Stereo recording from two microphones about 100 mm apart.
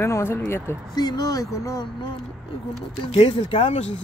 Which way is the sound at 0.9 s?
45° left (ahead or behind).